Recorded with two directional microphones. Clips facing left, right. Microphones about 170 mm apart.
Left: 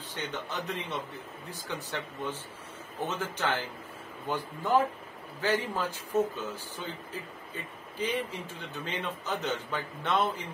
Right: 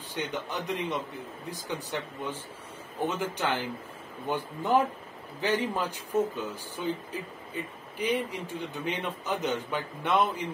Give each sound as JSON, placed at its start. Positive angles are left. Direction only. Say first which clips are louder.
{"t": 0.1, "sound": "a man's voice", "louder": "right 3 dB", "side_deg": -15}